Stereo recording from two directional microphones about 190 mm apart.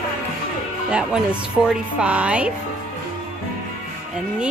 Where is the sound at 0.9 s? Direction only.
5° right (ahead or behind).